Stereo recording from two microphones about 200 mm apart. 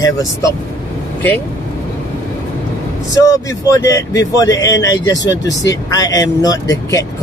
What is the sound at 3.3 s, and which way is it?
Speech, 15° left (ahead or behind).